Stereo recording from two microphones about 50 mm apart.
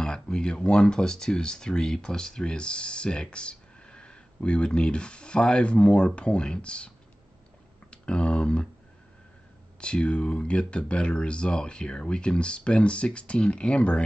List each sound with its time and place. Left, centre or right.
0.0 s speech: centre
7.9 s speech: left
9.8 s speech: left